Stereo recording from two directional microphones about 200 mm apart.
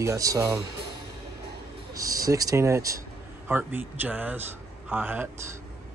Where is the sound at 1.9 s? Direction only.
15° right (ahead or behind).